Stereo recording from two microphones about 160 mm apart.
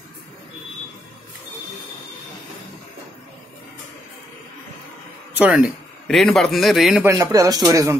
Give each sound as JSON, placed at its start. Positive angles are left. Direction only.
{"t": 5.4, "sound": "a man's voice", "side_deg": -10}
{"t": 7.1, "sound": "speech", "side_deg": -20}